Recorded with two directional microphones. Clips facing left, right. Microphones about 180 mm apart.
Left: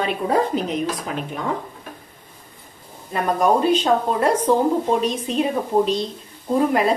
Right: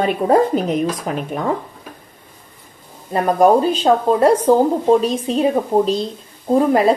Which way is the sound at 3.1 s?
35° right (ahead or behind).